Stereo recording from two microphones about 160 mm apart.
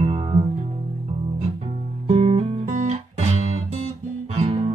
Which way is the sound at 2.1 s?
45° right (ahead or behind).